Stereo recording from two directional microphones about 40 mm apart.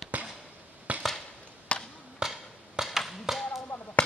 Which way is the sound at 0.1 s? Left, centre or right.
Right.